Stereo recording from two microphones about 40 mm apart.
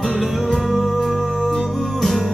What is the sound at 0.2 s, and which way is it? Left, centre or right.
Music, centre.